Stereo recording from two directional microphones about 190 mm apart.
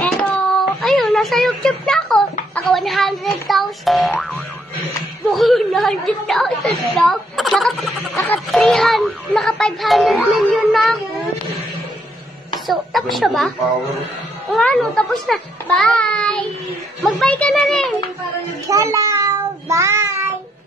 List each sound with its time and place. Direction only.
0.0 s a sound: 5° left (ahead or behind)
2.5 s a woman's voice: centre (ahead or behind)
12.6 s a woman's voice: centre (ahead or behind)
14.5 s a woman's voice: 5° left (ahead or behind)
18.7 s child singing: 15° right (ahead or behind)